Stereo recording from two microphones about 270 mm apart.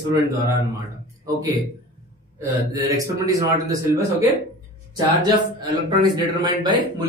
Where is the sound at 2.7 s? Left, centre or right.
Centre.